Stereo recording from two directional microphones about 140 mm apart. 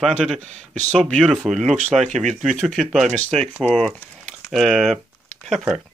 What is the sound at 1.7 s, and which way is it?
Speech, 55° right (ahead or behind).